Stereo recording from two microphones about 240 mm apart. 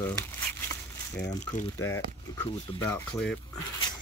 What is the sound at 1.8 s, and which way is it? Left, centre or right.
Speech, centre.